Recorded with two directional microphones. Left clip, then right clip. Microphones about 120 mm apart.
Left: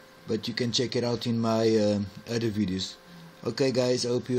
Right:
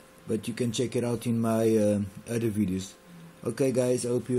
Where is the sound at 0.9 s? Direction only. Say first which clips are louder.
Left 1 dB; 5° left (ahead or behind).